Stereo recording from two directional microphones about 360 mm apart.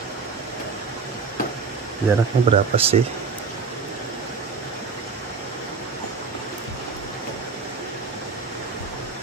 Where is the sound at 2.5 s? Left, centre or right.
Centre.